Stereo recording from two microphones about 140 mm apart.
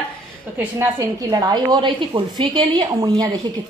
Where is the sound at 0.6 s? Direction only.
20° right (ahead or behind).